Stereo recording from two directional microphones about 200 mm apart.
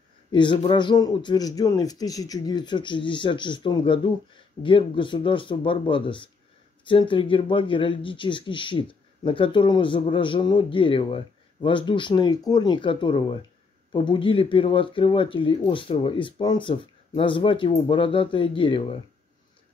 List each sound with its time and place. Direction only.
0.3 s speech: 25° left (ahead or behind)